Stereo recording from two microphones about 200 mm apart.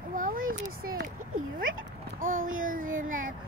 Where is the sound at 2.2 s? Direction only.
45° right (ahead or behind).